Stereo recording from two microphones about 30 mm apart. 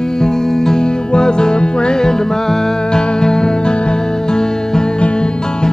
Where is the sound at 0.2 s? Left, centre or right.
Left.